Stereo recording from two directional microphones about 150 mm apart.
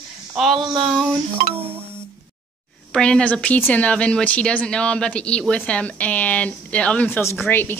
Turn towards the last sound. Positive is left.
turn(degrees=15)  # may be behind; listen again after turning